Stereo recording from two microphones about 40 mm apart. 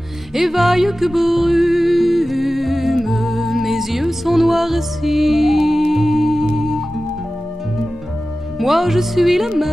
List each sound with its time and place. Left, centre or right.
0.3 s music: centre
8.5 s music: centre